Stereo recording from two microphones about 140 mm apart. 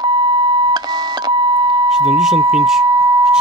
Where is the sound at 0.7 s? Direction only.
30° right (ahead or behind).